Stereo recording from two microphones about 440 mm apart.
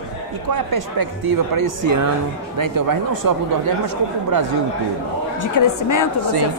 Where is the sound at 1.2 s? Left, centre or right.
Right.